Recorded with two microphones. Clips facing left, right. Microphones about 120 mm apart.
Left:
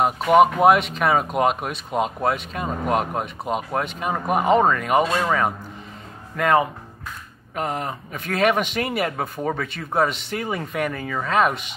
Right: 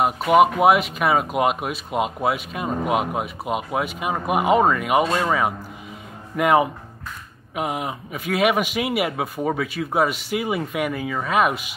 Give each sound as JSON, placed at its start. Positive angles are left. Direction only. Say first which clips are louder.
{"t": 0.0, "sound": "speech", "louder": "even", "side_deg": -5}